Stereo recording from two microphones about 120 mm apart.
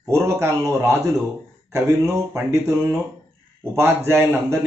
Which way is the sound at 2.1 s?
25° right (ahead or behind).